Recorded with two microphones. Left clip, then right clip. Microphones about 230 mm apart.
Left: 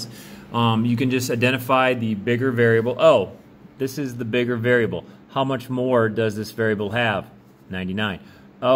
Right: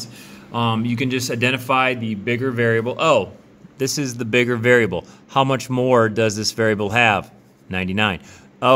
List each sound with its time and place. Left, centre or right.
0.3 s speech: centre
3.7 s a man's voice: right